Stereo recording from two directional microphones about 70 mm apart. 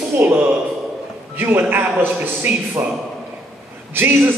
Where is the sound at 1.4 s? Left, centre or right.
Right.